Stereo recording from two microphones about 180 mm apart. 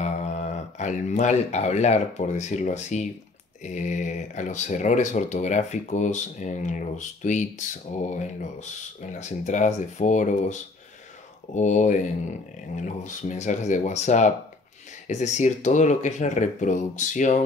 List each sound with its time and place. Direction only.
0.0 s speech: 40° left (ahead or behind)